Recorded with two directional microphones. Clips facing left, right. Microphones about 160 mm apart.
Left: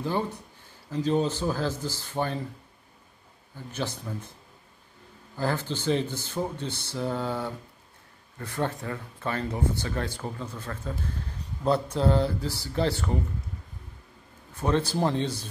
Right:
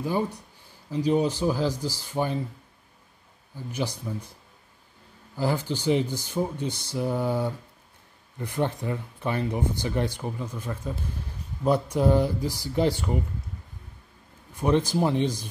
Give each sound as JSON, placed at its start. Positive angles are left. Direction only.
{"t": 0.8, "sound": "speech", "side_deg": -10}
{"t": 3.5, "sound": "speech", "side_deg": -10}
{"t": 5.4, "sound": "speech", "side_deg": -10}
{"t": 14.5, "sound": "speech", "side_deg": -15}